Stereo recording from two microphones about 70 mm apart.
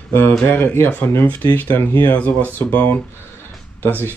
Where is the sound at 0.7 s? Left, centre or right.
Left.